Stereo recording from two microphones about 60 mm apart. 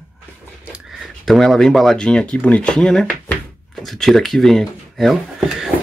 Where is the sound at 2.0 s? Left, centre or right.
Centre.